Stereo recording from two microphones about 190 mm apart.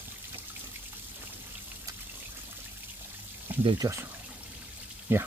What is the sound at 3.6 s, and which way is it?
Speech, 25° right (ahead or behind).